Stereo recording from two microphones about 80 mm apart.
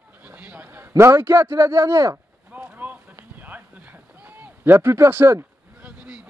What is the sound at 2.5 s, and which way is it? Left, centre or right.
Clip-clop, centre.